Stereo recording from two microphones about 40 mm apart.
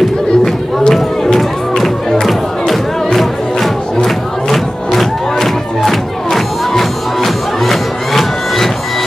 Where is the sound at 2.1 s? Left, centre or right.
Centre.